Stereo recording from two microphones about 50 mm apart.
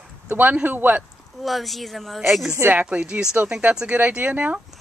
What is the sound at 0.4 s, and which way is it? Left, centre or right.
Speech, right.